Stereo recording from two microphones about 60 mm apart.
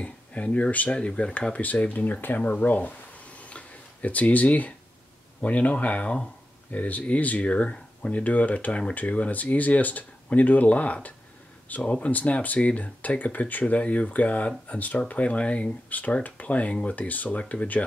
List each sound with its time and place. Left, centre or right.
0.0 s speech: left
2.2 s a sound: left
5.4 s speech: left